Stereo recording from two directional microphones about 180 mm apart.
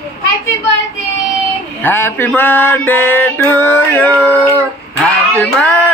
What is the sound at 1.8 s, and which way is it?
Music, 10° left (ahead or behind).